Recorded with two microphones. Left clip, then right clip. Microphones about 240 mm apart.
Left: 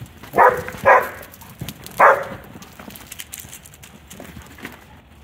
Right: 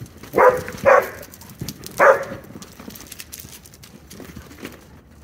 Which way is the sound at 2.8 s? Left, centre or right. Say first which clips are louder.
Left 2 dB; left.